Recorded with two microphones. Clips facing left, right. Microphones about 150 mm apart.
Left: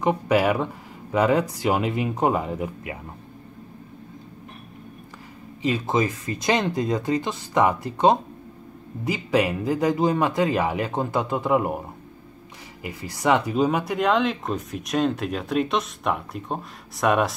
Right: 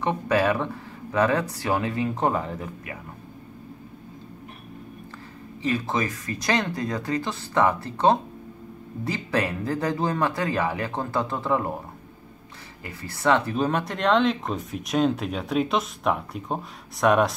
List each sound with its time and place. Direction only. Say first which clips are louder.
0.0 s speech: left 2 dB; 15° left (ahead or behind)
5.6 s speech: left 3 dB; 20° left (ahead or behind)
12.8 s speech: left 1 dB; 15° left (ahead or behind)